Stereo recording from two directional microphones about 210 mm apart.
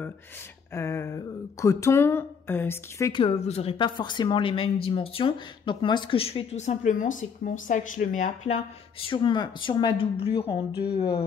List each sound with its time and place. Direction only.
0.7 s speech: 15° left (ahead or behind)
3.1 s speech: 25° left (ahead or behind)
9.0 s speech: 25° left (ahead or behind)